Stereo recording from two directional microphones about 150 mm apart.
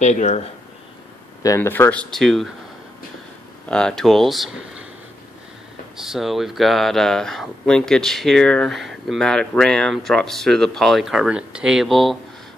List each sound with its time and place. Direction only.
0.0 s speech: 50° left (ahead or behind)
1.4 s speech: 20° left (ahead or behind)
2.0 s speech: centre (ahead or behind)
3.6 s speech: 5° left (ahead or behind)
5.9 s speech: centre (ahead or behind)